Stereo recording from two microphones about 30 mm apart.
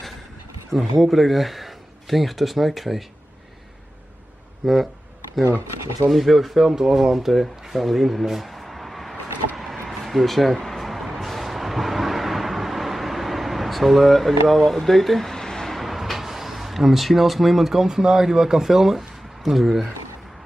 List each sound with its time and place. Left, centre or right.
0.7 s speech: centre
4.6 s speech: centre
6.0 s speech: centre
6.7 s speech: centre
10.7 s vehicle: centre
15.3 s a sound: centre
15.7 s speech: centre